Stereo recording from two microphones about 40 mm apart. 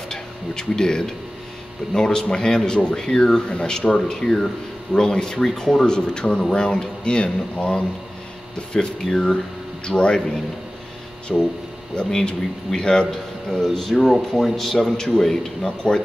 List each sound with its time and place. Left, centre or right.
0.1 s speech: centre
13.5 s speech: centre; by 16.0 s left